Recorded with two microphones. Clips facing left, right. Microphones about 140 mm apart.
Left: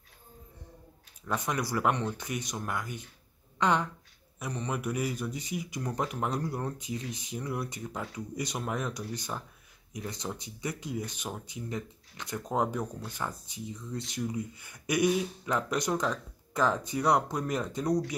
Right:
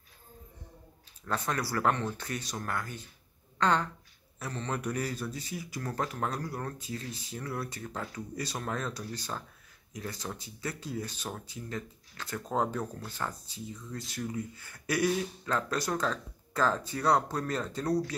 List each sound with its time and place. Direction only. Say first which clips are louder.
1.2 s a woman's voice: left 1 dB; 15° left (ahead or behind)